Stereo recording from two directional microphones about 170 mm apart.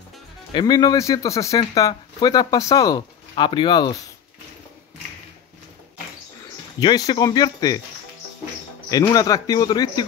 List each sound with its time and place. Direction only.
0.5 s speech: 25° left (ahead or behind)
6.8 s speech: 25° left (ahead or behind)
8.9 s speech: 20° left (ahead or behind)